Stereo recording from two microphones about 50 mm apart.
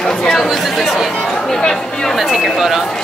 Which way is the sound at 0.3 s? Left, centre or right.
Centre.